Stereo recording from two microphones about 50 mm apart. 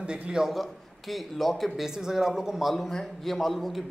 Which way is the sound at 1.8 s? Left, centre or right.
Centre.